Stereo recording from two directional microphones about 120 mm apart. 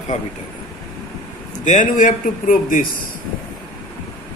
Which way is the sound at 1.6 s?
90° left.